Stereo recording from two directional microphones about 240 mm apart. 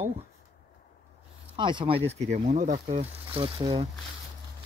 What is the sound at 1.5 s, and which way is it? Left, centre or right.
Speech, centre.